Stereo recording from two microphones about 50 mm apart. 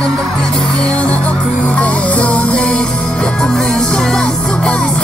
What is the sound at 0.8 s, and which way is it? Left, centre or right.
Music, left.